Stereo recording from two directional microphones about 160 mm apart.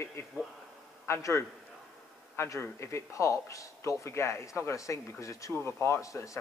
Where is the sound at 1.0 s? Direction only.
15° left (ahead or behind).